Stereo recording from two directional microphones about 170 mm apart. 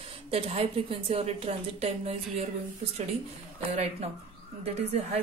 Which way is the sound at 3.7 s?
40° right (ahead or behind).